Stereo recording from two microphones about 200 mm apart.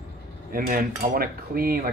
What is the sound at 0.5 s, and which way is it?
Cutlery, 45° right (ahead or behind).